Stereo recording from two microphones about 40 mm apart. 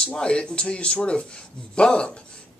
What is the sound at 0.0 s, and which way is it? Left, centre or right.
Speech, left.